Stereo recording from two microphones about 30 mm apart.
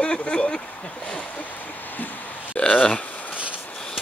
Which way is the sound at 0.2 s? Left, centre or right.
Left.